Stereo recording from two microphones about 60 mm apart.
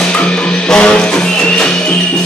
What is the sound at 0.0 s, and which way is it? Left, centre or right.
Music, centre.